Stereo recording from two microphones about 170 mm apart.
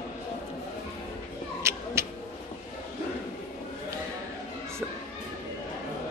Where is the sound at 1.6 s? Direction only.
15° right (ahead or behind).